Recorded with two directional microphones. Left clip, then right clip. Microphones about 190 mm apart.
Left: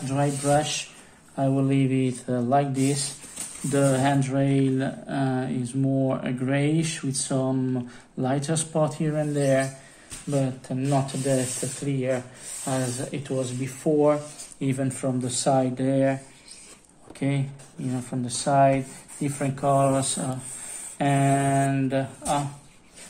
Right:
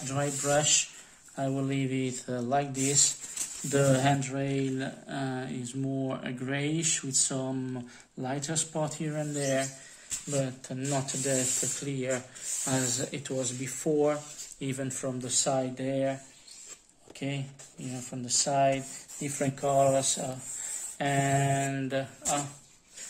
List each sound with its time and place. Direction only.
0.0 s speech: 20° right (ahead or behind)
14.6 s speech: 15° right (ahead or behind)
17.2 s speech: 10° right (ahead or behind)